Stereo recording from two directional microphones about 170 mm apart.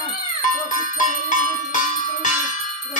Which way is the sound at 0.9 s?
50° left (ahead or behind).